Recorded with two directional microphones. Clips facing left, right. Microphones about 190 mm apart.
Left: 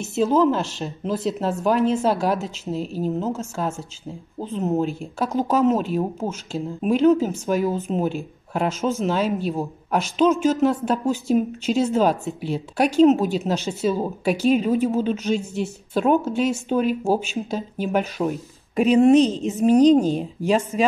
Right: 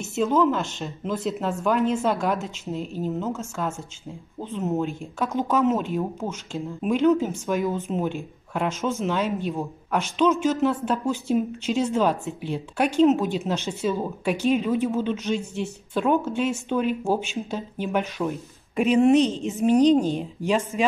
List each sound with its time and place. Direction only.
0.1 s speech: 35° left (ahead or behind)